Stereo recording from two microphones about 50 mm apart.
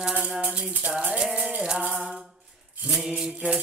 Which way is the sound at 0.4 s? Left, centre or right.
Right.